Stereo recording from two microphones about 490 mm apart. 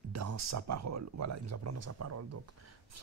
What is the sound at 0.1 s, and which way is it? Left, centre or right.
Speech, right.